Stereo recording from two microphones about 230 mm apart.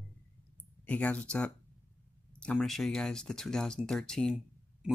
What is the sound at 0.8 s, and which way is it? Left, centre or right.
Speech, centre.